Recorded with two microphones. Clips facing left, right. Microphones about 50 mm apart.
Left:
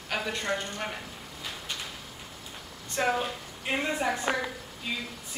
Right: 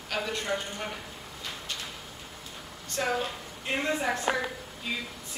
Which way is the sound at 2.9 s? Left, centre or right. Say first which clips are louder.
Left 2 dB; centre.